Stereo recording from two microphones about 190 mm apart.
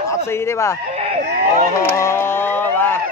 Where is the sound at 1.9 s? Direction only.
15° left (ahead or behind).